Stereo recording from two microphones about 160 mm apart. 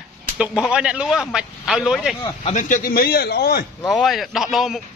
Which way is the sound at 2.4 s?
50° left (ahead or behind).